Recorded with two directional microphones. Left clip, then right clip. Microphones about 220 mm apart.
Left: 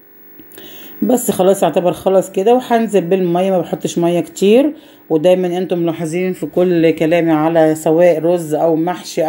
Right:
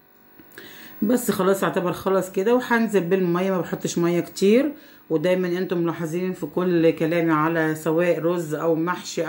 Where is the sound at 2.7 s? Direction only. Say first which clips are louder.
Left 7 dB; centre (ahead or behind).